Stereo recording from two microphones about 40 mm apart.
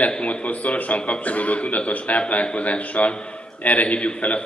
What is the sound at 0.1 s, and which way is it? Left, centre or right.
A man's voice, left.